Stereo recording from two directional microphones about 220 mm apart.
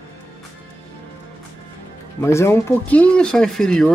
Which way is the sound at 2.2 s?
10° left (ahead or behind).